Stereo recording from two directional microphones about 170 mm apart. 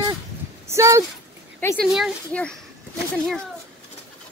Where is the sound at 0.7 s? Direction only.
15° right (ahead or behind).